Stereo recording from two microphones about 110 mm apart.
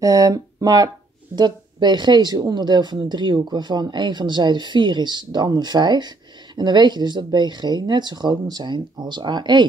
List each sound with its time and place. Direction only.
0.0 s speech: 30° right (ahead or behind)